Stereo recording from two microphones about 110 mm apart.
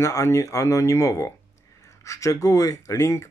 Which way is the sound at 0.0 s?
30° left (ahead or behind).